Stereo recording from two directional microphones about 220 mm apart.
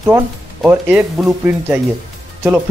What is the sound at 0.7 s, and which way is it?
Speech, 10° right (ahead or behind).